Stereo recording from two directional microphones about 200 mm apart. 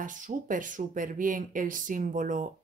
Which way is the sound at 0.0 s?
40° right (ahead or behind).